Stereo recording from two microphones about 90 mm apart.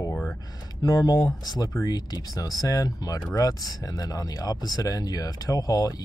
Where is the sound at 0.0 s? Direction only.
15° left (ahead or behind).